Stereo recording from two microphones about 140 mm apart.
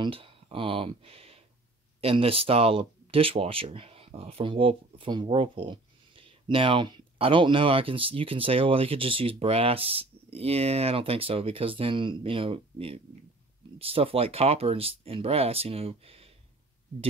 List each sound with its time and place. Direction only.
0.0 s speech: 40° right (ahead or behind)